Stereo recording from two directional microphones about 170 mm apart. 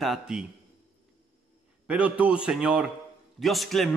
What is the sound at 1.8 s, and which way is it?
A man's voice, 5° right (ahead or behind).